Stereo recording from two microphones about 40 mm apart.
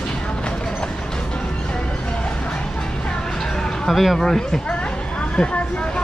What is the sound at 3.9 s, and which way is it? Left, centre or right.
Speech, centre.